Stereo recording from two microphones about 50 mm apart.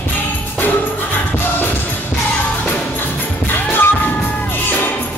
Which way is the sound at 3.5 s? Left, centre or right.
Left.